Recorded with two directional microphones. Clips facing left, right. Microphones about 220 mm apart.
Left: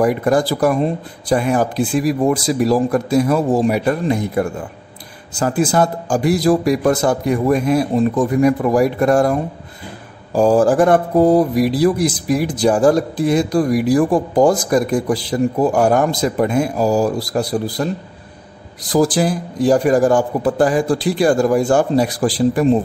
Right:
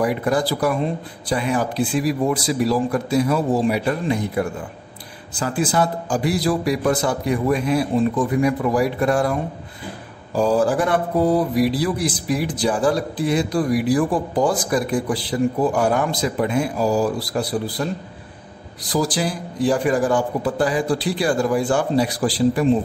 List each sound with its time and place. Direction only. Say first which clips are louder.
0.0 s speech: left 5 dB; 45° left (ahead or behind)
18.9 s speech: left 6 dB; 50° left (ahead or behind)